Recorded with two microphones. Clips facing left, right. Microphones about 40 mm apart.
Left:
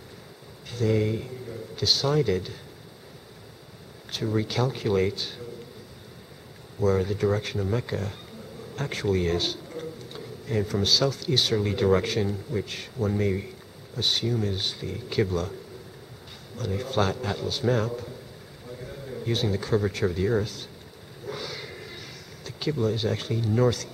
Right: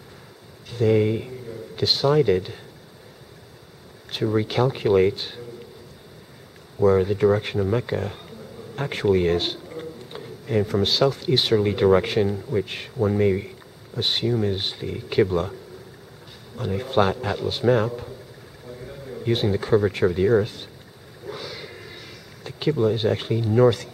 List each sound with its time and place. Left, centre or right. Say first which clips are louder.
0.7 s speech: right 5 dB; right
4.1 s speech: right 5 dB; right
6.8 s speech: right 6 dB; right
9.7 s a sound: right 2 dB; right
11.5 s speech: right 6 dB; right
13.9 s speech: right 3 dB; right
16.5 s speech: right 5 dB; right
18.7 s a sound: right 1 dB; centre
19.2 s speech: right 5 dB; right
20.4 s speech: right 2 dB; right
21.3 s a sound: right 1 dB; centre
22.4 s speech: right 6 dB; right